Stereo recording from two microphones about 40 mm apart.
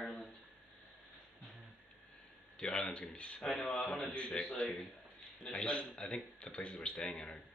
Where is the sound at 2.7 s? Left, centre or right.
Left.